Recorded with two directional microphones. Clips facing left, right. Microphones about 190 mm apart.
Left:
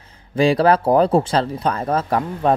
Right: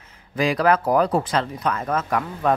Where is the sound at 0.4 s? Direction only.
30° left (ahead or behind).